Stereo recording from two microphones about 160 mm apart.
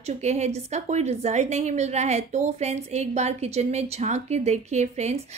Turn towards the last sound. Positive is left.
turn(degrees=-45)  # may be behind; listen again after turning